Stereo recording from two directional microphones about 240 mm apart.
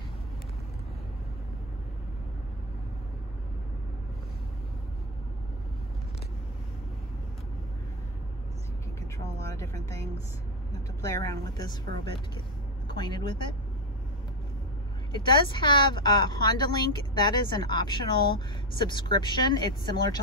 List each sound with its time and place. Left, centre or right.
9.6 s speech: centre
11.0 s a woman's voice: centre
15.1 s speech: centre